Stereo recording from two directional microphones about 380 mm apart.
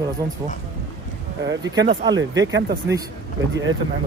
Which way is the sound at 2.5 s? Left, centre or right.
Right.